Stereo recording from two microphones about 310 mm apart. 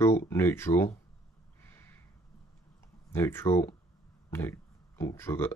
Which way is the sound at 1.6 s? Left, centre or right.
Centre.